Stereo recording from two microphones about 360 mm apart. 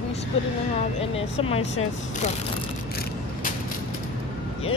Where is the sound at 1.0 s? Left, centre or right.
Centre.